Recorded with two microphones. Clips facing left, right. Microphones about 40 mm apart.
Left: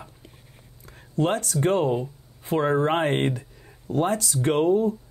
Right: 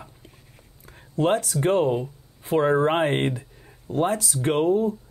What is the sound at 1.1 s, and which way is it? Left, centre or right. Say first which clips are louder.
Speech: right 2 dB; centre.